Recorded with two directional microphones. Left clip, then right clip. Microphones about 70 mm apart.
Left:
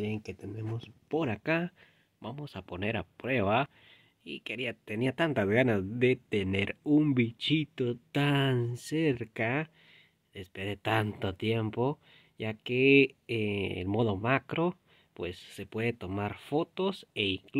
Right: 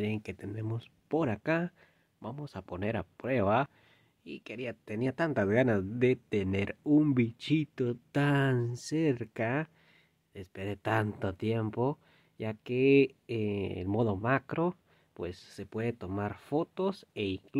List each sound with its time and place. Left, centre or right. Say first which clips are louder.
0.0 s speech: right 1 dB; right
1.2 s speech: left 1 dB; right
4.4 s speech: left 4 dB; centre
7.2 s speech: left 1 dB; centre
8.6 s speech: even; left
8.9 s speech: left 1 dB; centre